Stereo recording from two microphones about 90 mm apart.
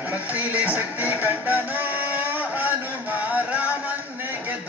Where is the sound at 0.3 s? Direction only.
20° right (ahead or behind).